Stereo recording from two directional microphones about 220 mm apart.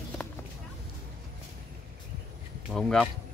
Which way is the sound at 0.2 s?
5° left (ahead or behind).